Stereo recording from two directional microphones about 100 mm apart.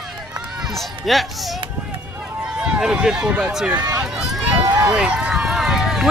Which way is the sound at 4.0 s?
5° right (ahead or behind).